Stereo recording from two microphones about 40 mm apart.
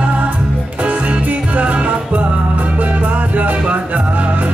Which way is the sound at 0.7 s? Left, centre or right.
Right.